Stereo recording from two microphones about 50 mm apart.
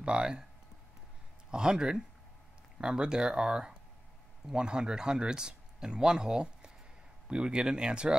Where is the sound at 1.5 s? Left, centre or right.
Centre.